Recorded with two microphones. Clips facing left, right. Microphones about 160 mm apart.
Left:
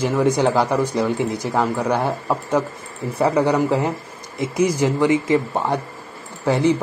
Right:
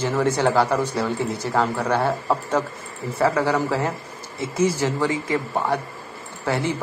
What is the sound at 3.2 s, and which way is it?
A man's voice, 20° left (ahead or behind).